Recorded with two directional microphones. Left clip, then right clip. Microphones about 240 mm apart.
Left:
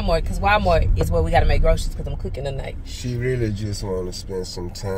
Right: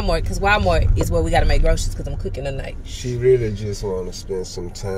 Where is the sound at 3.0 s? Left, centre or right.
Left.